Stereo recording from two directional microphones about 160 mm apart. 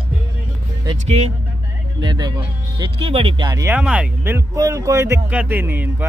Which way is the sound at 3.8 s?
5° right (ahead or behind).